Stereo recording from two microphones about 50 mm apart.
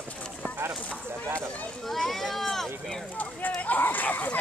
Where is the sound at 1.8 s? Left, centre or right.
Centre.